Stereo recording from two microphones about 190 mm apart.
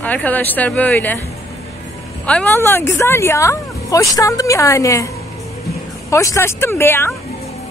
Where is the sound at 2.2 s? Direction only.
10° left (ahead or behind).